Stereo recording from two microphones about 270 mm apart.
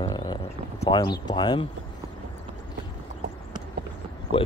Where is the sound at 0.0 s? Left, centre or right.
Centre.